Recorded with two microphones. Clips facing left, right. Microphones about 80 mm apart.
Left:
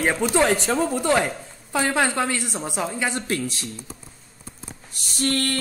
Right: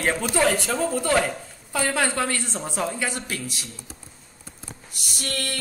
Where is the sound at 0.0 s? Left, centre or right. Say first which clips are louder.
Left 2 dB; centre.